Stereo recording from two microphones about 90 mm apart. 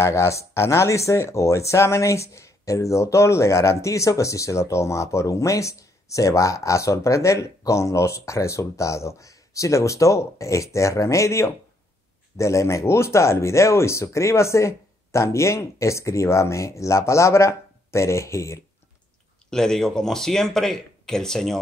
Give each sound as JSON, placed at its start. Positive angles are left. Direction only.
{"t": 0.0, "sound": "speech", "side_deg": 30}
{"t": 19.5, "sound": "speech", "side_deg": 5}